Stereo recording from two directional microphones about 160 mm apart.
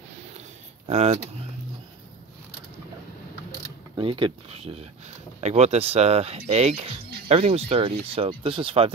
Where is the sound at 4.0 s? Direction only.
35° right (ahead or behind).